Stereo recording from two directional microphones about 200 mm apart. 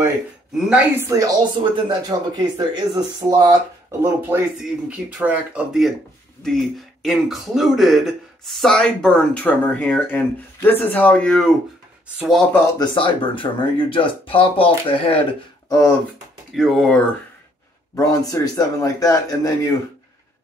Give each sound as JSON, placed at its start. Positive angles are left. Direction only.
{"t": 0.6, "sound": "speech", "side_deg": -5}
{"t": 12.7, "sound": "speech", "side_deg": 25}
{"t": 16.5, "sound": "speech", "side_deg": 0}
{"t": 17.9, "sound": "a man's voice", "side_deg": 20}